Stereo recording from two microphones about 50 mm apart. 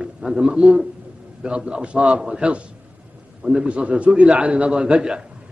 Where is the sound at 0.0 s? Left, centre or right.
Centre.